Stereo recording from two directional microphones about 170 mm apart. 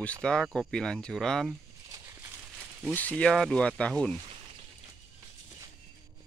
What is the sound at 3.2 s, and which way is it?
Speech, 5° left (ahead or behind).